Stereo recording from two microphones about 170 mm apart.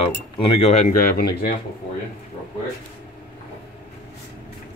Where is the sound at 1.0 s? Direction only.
60° left (ahead or behind).